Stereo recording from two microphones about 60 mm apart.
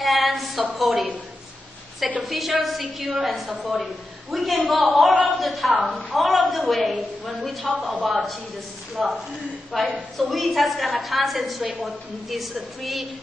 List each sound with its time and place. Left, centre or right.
0.0 s a sound: centre
0.7 s a woman's voice: centre
2.2 s a woman's voice: centre
7.6 s a woman's voice: centre
8.0 s a woman's voice: centre